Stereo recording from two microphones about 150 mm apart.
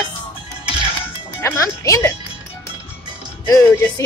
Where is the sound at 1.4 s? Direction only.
20° left (ahead or behind).